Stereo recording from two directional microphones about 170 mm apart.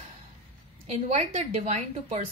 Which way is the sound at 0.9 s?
40° right (ahead or behind).